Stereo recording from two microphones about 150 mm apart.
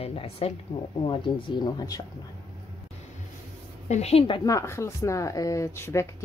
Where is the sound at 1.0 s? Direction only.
35° left (ahead or behind).